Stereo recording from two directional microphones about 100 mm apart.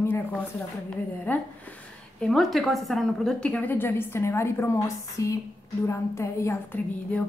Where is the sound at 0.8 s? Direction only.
15° left (ahead or behind).